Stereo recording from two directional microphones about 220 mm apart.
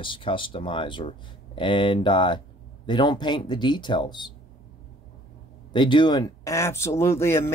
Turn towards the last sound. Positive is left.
turn(degrees=10)  # may be behind; listen again after turning